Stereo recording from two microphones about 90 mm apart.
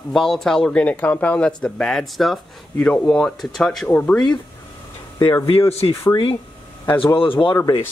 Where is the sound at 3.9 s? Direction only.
15° left (ahead or behind).